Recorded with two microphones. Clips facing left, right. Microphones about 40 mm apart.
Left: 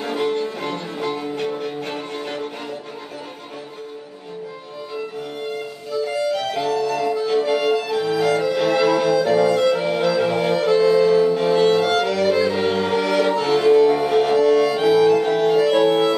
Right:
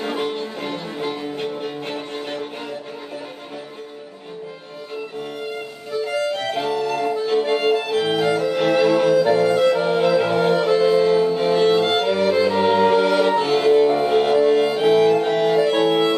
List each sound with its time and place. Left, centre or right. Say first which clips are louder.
0.0 s music: left 2 dB; centre
6.2 s music: left 1 dB; right
8.2 s music: even; right
9.2 s music: even; right
10.0 s music: right 1 dB; centre
11.8 s violin: even; right
12.4 s music: right 3 dB; right
15.8 s music: left 1 dB; centre